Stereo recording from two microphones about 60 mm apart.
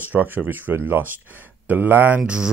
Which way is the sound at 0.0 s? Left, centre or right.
Right.